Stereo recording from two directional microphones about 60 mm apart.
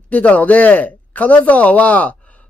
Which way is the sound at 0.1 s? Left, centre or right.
Left.